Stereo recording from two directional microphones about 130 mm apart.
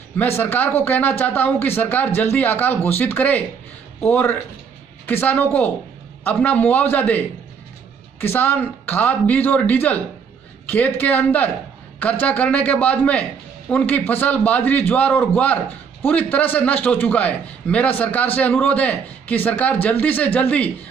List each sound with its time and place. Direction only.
0.2 s a man's voice: 15° left (ahead or behind)